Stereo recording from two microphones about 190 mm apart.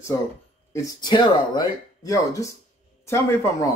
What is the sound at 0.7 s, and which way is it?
Speech, 15° left (ahead or behind).